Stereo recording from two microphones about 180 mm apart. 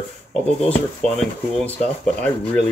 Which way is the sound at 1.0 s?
5° left (ahead or behind).